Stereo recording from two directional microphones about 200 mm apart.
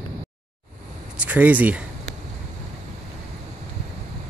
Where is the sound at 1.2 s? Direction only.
10° right (ahead or behind).